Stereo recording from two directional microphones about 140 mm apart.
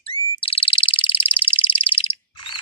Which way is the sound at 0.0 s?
40° left (ahead or behind).